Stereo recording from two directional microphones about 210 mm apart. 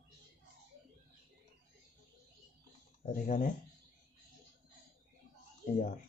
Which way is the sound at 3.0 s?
40° left (ahead or behind).